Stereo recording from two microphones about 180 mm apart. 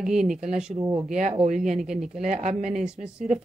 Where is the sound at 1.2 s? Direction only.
40° right (ahead or behind).